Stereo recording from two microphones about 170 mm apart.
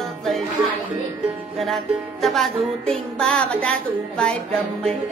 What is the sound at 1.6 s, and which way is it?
Music, centre (ahead or behind).